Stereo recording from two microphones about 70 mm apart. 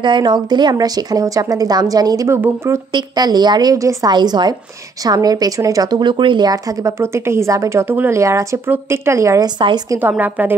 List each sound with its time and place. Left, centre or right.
0.0 s a woman's voice: right
2.2 s speech: right
2.9 s a woman's voice: right
3.7 s a woman's voice: right
4.1 s a woman's voice: right
5.0 s speech: right
6.8 s a woman's voice: right
10.0 s a woman's voice: right